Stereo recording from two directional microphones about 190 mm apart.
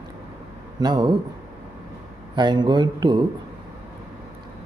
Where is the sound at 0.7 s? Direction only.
20° right (ahead or behind).